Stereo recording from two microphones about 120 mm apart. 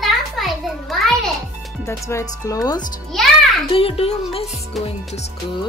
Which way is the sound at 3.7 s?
50° left (ahead or behind).